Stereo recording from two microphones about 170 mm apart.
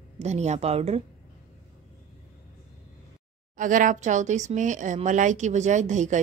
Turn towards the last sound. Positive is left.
turn(degrees=-45)  # may be behind; listen again after turning